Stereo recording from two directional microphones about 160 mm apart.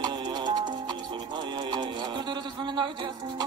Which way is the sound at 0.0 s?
25° right (ahead or behind).